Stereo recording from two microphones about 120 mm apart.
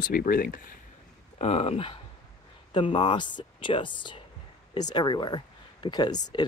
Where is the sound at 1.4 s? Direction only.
60° left (ahead or behind).